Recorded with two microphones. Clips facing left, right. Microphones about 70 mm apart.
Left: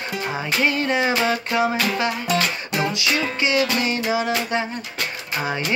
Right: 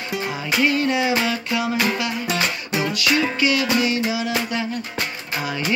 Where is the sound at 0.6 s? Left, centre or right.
Left.